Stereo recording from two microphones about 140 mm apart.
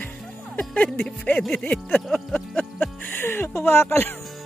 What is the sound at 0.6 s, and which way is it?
Speech, 10° left (ahead or behind).